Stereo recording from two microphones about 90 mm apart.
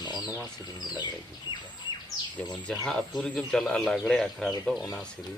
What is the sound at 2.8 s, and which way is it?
Speech, 5° left (ahead or behind).